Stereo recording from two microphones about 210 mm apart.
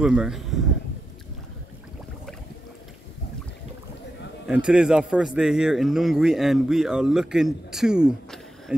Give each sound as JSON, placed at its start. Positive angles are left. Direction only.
{"t": 0.0, "sound": "a man's voice", "side_deg": -5}
{"t": 4.5, "sound": "a man's voice", "side_deg": -5}